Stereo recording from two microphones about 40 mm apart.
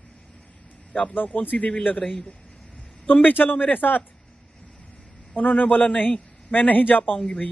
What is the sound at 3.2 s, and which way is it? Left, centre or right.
Speech, left.